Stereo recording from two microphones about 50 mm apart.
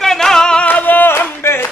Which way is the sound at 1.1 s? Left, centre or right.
Left.